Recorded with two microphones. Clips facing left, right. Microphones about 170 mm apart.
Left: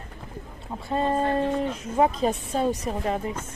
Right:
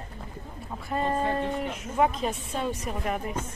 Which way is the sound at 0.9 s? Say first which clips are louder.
Left 3 dB; 25° left (ahead or behind).